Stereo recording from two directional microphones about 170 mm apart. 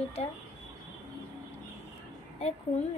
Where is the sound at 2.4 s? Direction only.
35° left (ahead or behind).